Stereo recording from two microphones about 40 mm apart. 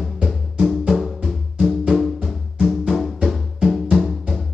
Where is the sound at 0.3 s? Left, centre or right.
Centre.